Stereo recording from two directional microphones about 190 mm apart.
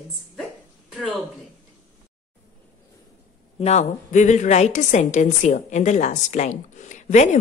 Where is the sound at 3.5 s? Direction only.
35° left (ahead or behind).